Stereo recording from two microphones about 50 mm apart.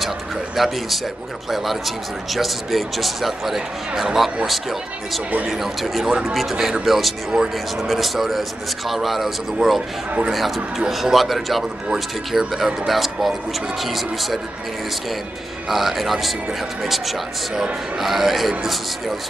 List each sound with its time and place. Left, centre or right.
0.6 s speech: centre
9.8 s speech: centre
10.9 s speech: centre
15.7 s speech: centre